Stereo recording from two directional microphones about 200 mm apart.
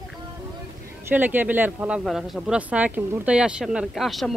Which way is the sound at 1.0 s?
10° right (ahead or behind).